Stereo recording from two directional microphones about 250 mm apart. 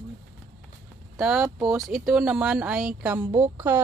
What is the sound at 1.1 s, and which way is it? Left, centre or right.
Speech, centre.